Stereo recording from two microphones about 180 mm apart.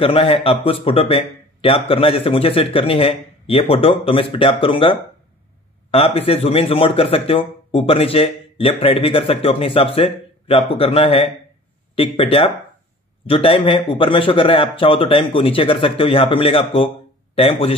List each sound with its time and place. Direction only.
0.0 s a man's voice: 30° left (ahead or behind)